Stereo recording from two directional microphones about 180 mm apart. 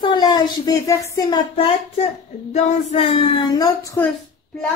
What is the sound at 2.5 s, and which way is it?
Speech, 40° left (ahead or behind).